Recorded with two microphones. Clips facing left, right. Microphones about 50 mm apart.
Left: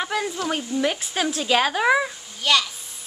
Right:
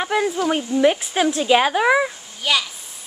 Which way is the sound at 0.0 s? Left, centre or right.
Centre.